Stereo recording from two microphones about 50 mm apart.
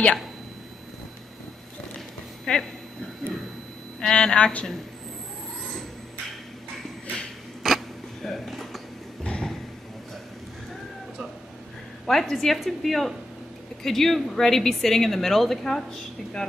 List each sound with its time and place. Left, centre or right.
2.5 s speech: centre
4.0 s speech: centre
7.6 s a sound: centre
9.2 s vehicle: centre
12.1 s a woman's voice: centre